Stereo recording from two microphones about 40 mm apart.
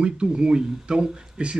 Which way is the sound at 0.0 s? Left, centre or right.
Right.